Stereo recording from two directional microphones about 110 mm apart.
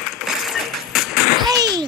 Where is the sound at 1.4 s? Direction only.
35° right (ahead or behind).